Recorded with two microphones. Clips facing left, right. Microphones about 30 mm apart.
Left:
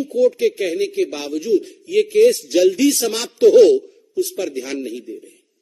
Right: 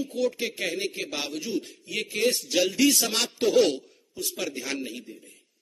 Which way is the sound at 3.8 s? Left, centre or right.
Centre.